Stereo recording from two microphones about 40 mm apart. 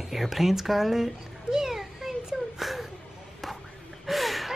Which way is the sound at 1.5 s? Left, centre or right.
Centre.